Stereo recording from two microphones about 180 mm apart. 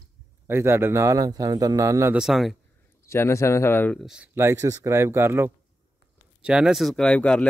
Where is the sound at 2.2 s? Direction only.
Centre (ahead or behind).